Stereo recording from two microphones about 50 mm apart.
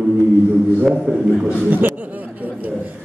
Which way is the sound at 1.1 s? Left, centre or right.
Centre.